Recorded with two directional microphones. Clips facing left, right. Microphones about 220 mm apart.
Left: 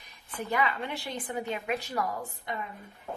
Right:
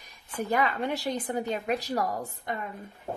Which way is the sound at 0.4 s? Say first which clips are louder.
Right 3 dB; 45° right (ahead or behind).